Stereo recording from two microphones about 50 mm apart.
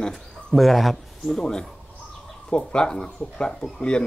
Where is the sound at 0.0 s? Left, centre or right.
Centre.